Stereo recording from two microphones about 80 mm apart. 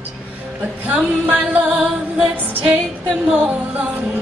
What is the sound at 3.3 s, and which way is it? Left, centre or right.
Singing, centre.